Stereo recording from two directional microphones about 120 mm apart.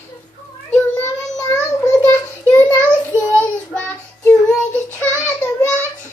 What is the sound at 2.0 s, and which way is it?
Child singing, 20° left (ahead or behind).